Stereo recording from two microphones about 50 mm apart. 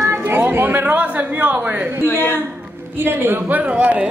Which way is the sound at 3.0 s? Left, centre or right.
Right.